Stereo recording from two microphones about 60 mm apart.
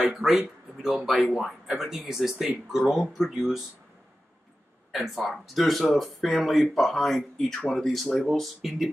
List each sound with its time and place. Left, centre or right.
0.0 s speech: centre
5.4 s speech: centre